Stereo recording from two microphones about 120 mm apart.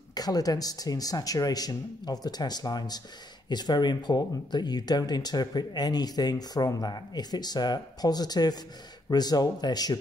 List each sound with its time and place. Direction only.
0.1 s speech: 30° left (ahead or behind)